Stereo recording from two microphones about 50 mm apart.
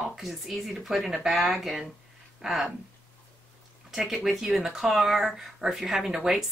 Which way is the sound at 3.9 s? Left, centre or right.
Centre.